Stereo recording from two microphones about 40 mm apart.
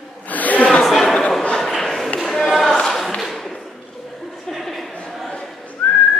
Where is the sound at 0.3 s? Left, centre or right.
Left.